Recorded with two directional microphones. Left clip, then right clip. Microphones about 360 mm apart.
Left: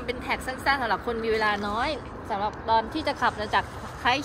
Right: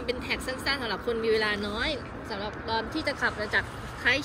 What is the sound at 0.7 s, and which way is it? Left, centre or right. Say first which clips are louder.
Speech: left 5 dB; centre.